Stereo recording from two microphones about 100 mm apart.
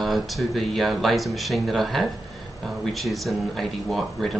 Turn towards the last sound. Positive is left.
turn(degrees=0)  # may be behind; listen again after turning